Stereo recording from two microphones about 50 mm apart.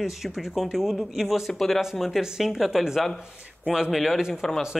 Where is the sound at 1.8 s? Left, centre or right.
Centre.